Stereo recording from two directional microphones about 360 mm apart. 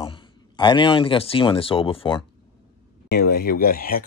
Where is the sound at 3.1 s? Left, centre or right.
Left.